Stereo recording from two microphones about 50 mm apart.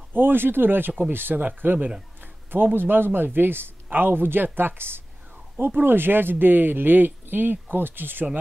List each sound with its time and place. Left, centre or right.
0.1 s speech: right